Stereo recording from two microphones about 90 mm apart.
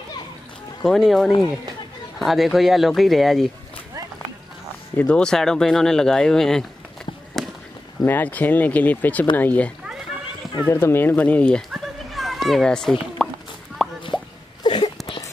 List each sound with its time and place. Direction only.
0.8 s speech: centre (ahead or behind)
4.9 s speech: 10° left (ahead or behind)
7.4 s a sound: centre (ahead or behind)
8.0 s speech: 20° left (ahead or behind)
10.7 s speech: 25° left (ahead or behind)
11.7 s goat: centre (ahead or behind)
13.2 s a sound: centre (ahead or behind)
13.8 s plop: centre (ahead or behind)
14.6 s a sound: 65° left (ahead or behind)